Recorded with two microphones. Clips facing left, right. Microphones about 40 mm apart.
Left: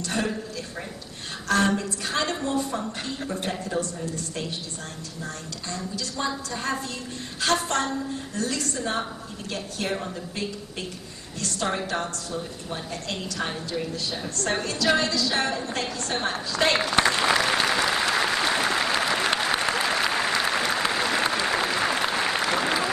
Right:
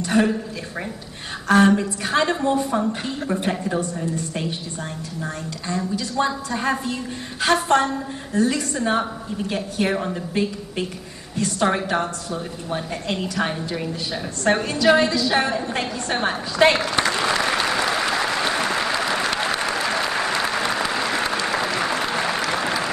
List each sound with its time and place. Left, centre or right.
0.0 s a woman's voice: centre
1.5 s a woman's voice: centre
16.7 s speech: centre
17.6 s applause: centre